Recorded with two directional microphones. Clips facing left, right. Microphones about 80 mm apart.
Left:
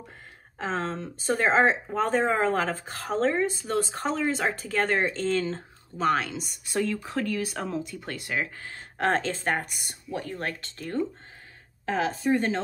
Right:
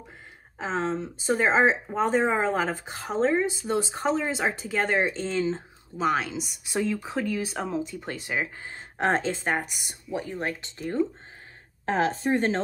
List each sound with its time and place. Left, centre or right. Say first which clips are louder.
0.6 s speech: right 2 dB; centre
7.9 s speech: right 1 dB; centre
9.1 s speech: right 1 dB; centre
11.8 s speech: right 2 dB; right